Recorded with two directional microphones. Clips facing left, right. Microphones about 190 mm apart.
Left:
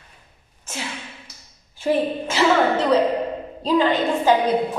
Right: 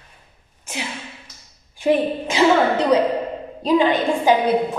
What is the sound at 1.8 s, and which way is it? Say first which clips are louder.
A woman's voice: right 2 dB; 15° right (ahead or behind).